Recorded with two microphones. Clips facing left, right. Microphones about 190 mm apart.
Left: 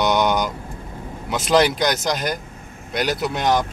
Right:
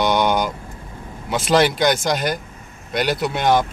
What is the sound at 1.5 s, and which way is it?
Speech, centre (ahead or behind).